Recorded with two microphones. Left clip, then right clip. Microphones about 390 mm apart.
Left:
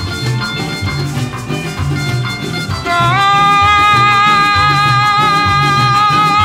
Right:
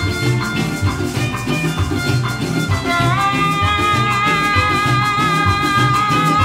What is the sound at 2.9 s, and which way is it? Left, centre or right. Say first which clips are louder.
Music: left 7 dB; left.